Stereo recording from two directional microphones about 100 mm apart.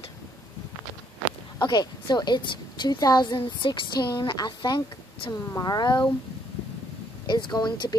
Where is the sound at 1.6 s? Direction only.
45° left (ahead or behind).